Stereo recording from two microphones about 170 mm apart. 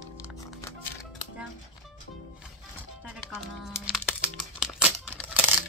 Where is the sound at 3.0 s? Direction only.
Centre (ahead or behind).